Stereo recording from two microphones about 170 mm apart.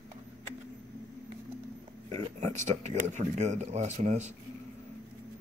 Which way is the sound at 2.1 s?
40° right (ahead or behind).